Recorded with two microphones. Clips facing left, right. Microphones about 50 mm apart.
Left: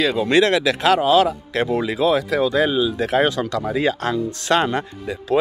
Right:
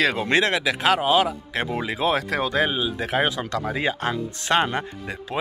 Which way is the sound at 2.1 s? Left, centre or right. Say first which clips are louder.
Left 4 dB; right.